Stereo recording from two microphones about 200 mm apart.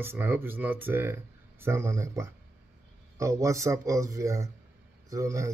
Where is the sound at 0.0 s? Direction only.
10° right (ahead or behind).